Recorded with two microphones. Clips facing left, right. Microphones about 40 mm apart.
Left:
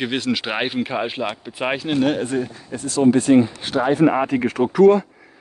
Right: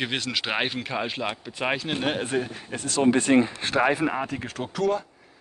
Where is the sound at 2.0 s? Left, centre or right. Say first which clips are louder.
Left 8 dB; centre.